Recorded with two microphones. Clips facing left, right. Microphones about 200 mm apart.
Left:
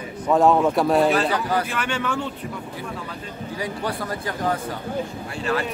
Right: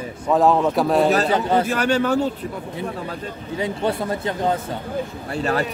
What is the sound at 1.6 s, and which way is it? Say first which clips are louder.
Speech: right 7 dB; 40° right (ahead or behind).